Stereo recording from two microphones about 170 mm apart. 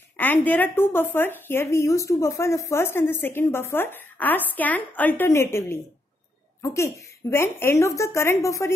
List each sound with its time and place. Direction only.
0.2 s a woman's voice: 10° left (ahead or behind)